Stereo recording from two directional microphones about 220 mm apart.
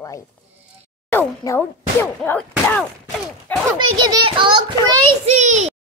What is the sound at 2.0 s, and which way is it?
Speech, 10° left (ahead or behind).